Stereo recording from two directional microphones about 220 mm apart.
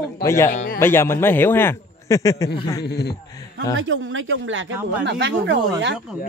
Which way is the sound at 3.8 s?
60° right (ahead or behind).